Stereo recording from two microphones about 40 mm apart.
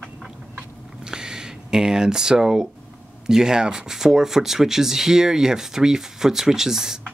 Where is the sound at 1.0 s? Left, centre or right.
Centre.